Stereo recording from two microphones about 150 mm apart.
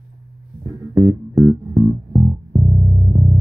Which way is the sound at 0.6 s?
20° right (ahead or behind).